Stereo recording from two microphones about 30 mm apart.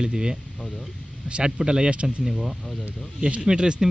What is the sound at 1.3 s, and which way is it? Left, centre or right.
Speech, right.